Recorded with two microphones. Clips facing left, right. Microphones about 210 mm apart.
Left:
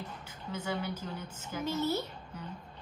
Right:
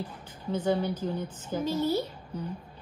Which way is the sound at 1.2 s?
10° left (ahead or behind).